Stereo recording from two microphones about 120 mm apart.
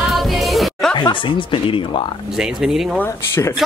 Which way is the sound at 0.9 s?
45° left (ahead or behind).